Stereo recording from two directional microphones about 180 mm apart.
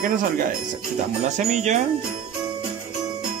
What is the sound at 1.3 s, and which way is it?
Speech, 40° right (ahead or behind).